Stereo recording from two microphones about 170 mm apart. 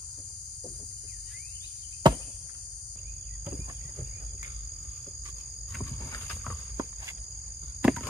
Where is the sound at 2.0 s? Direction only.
25° right (ahead or behind).